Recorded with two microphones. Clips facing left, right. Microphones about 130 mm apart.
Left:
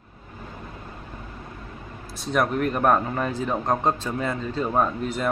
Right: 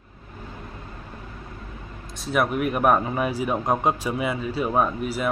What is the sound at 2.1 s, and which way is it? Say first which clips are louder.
Speech: even; 5° right (ahead or behind).